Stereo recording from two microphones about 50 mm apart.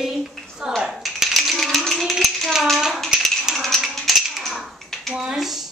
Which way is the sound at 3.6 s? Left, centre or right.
Centre.